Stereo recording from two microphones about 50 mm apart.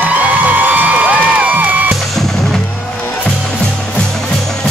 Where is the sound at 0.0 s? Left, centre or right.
Right.